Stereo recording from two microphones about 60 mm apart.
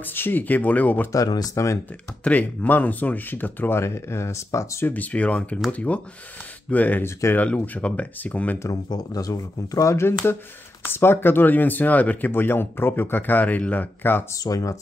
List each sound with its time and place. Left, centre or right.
0.0 s speech: left
1.1 s speech: left
2.2 s speech: left
3.8 s speech: left
4.8 s speech: left
8.6 s speech: left
10.8 s speech: left
14.3 s speech: left